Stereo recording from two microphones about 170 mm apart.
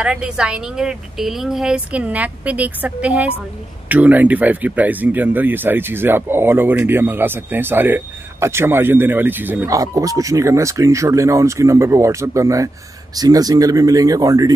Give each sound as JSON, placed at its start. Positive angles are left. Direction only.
{"t": 0.0, "sound": "speech", "side_deg": -5}